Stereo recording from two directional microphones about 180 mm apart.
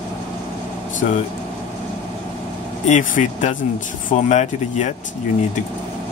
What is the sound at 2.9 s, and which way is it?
Speech, 40° left (ahead or behind).